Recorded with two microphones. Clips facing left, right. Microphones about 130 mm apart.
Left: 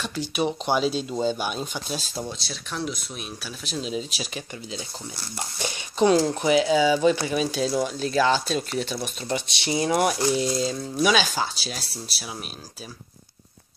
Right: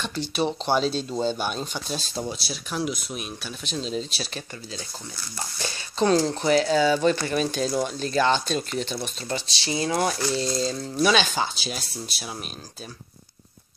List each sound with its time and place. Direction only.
0.4 s speech: 10° left (ahead or behind)
2.2 s speech: 10° right (ahead or behind)